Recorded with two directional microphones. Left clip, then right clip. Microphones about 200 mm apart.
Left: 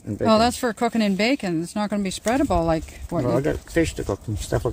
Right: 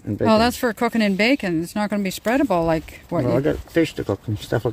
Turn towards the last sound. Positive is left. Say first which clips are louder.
# right 2 dB
turn(degrees=-25)  # may be behind; listen again after turning